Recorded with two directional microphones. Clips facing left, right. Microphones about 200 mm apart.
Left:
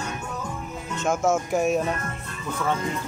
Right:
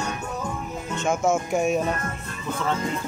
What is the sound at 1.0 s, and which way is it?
Speech, centre (ahead or behind).